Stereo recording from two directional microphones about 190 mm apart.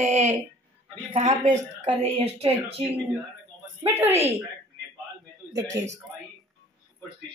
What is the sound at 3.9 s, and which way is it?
Speech, 15° right (ahead or behind).